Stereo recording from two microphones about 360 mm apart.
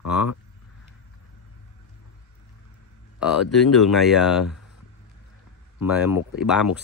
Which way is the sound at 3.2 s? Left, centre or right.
Centre.